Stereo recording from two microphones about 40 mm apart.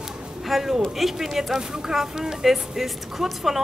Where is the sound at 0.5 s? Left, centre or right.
Centre.